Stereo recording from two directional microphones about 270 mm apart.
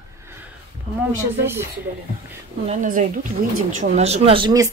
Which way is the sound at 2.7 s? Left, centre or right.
Right.